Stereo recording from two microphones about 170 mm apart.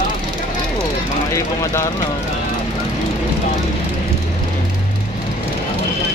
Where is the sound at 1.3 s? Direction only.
15° left (ahead or behind).